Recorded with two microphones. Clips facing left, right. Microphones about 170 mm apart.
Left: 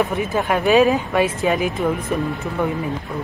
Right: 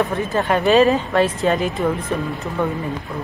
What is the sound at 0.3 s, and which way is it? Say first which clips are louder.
Speech: right 1 dB; 5° left (ahead or behind).